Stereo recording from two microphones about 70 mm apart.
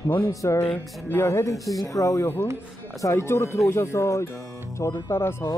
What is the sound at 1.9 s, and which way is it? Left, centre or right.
Speech, left.